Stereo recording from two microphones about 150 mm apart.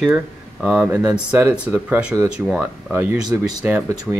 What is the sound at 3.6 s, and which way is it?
Speech, 10° right (ahead or behind).